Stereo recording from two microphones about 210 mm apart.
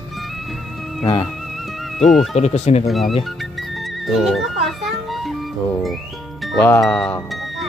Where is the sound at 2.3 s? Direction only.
30° left (ahead or behind).